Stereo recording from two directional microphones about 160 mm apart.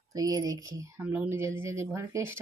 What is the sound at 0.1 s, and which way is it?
A woman's voice, 20° right (ahead or behind).